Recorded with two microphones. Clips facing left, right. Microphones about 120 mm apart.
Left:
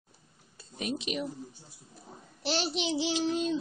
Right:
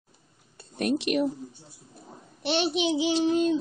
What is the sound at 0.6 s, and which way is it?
Speech, 60° right (ahead or behind).